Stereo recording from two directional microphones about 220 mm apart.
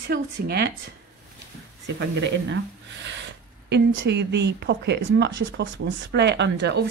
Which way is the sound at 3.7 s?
50° right (ahead or behind).